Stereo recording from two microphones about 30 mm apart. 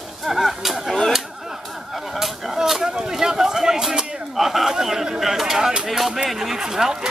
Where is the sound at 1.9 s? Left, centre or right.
Centre; by 3.8 s right.